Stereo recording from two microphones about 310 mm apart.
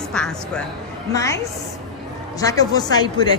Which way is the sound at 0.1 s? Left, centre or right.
Centre.